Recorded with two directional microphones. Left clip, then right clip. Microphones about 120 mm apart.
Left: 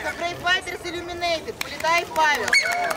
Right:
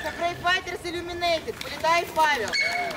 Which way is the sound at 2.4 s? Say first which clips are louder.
Left 5 dB; 25° left (ahead or behind).